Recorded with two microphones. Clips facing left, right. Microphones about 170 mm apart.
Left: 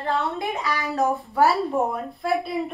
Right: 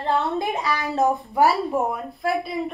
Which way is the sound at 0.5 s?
20° right (ahead or behind).